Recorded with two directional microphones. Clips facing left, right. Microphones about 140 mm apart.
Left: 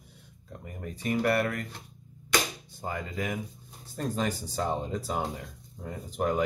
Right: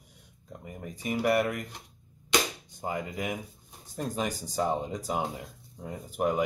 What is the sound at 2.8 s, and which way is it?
Speech, 15° right (ahead or behind).